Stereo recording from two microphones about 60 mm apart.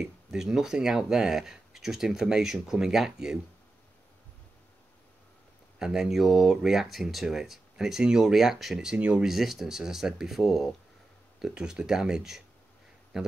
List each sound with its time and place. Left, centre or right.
0.0 s speech: centre
5.8 s speech: centre
8.9 s speech: right
9.2 s a man's voice: centre